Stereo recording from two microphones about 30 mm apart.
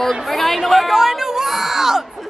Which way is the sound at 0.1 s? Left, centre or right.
Centre.